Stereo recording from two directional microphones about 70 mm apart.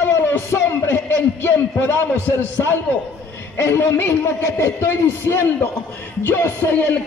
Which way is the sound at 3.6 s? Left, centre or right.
Left.